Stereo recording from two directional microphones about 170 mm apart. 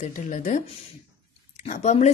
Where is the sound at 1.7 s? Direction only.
40° left (ahead or behind).